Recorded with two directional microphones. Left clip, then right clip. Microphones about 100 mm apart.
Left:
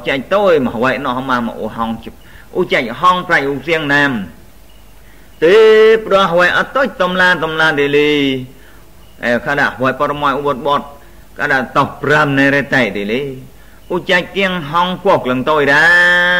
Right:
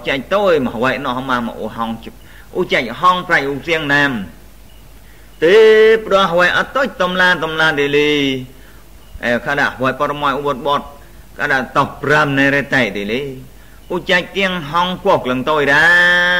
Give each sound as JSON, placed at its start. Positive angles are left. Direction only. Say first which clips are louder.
{"t": 0.0, "sound": "a man's voice", "louder": "left 2 dB", "side_deg": -45}
{"t": 5.4, "sound": "a man's voice", "louder": "left 1 dB", "side_deg": -45}